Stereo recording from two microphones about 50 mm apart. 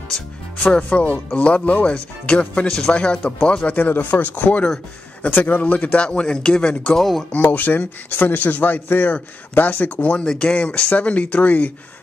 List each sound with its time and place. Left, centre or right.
0.7 s speech: left
3.7 s a man's voice: left
7.0 s speech: centre
7.4 s a man's voice: left